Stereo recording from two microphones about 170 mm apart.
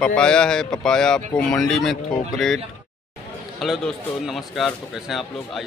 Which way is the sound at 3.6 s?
Centre (ahead or behind).